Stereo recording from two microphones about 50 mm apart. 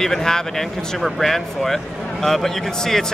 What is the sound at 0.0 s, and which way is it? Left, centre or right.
Speech, centre.